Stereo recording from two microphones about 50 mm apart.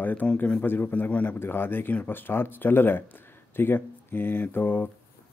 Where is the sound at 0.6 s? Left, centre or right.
Left.